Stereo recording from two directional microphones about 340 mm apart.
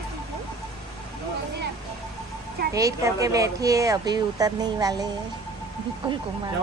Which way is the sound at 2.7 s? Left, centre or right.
Centre.